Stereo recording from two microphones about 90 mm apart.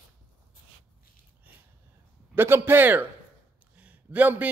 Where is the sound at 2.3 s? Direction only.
25° right (ahead or behind).